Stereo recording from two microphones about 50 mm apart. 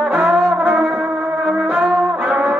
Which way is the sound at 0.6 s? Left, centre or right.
Right.